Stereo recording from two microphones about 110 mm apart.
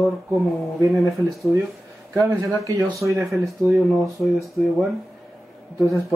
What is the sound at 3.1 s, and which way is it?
Speech, centre (ahead or behind).